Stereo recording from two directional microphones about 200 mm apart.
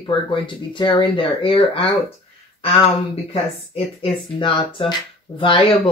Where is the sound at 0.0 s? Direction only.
25° left (ahead or behind).